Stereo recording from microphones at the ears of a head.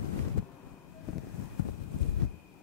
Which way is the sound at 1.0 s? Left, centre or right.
Left.